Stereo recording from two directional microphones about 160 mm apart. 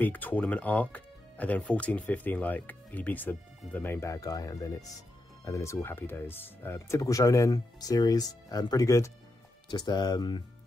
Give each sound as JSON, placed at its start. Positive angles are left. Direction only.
{"t": 0.0, "sound": "speech", "side_deg": 10}